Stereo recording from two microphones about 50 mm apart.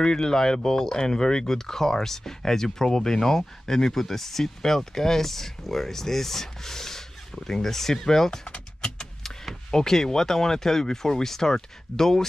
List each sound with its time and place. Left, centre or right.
0.0 s speech: centre
8.5 s vehicle: centre
9.7 s speech: centre